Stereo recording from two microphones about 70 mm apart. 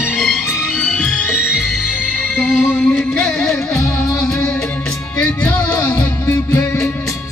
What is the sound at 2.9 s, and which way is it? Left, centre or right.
Music, centre.